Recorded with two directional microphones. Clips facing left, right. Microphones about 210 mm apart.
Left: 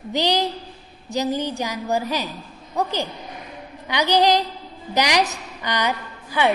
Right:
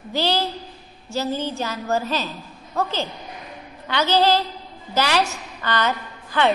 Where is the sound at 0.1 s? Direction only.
15° left (ahead or behind).